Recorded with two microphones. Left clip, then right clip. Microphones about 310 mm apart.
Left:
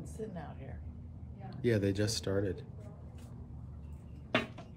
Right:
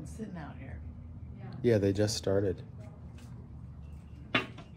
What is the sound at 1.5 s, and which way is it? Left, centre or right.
Speech, centre.